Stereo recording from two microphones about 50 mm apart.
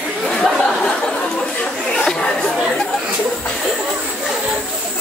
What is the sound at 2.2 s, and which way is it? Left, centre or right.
Chatter, centre.